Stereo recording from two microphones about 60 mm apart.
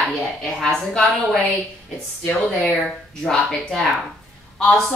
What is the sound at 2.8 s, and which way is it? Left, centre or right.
A woman's voice, centre.